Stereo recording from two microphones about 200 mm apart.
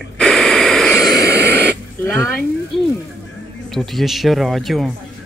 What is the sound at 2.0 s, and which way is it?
Throat clearing, 10° left (ahead or behind).